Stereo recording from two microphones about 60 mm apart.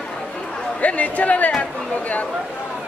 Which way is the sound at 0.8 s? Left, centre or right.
Left.